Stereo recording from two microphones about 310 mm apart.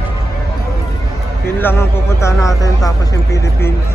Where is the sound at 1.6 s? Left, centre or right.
Centre.